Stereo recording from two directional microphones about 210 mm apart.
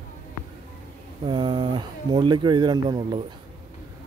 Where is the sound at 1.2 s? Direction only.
25° right (ahead or behind).